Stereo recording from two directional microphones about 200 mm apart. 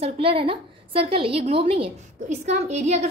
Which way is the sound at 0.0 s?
25° right (ahead or behind).